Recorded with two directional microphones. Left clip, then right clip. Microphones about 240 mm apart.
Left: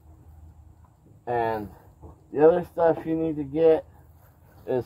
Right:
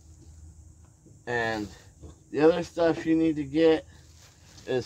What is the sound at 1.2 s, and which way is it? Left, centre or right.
Speech, centre.